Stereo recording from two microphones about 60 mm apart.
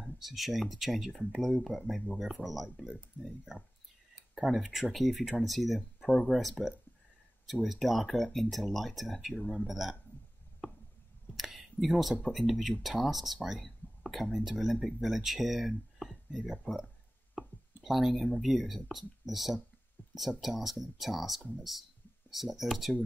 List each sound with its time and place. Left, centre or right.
0.0 s speech: centre
4.4 s speech: centre
9.3 s speech: centre
9.7 s speech: centre
11.3 s a sound: centre
12.3 s speech: centre
16.7 s speech: left
17.4 s a sound: centre
17.8 s speech: centre